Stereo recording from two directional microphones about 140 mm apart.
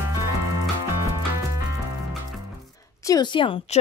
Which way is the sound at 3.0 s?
30° left (ahead or behind).